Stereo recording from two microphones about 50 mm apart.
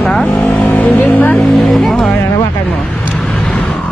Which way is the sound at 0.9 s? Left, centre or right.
Left.